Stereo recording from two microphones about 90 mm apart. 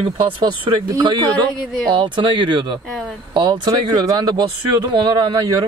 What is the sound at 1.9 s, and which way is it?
Speech, 65° right (ahead or behind).